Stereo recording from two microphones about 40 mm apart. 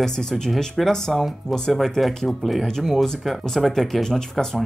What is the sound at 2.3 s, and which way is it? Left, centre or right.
Speech, centre.